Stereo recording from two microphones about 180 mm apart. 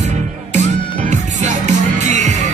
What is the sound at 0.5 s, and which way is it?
Music, 40° right (ahead or behind).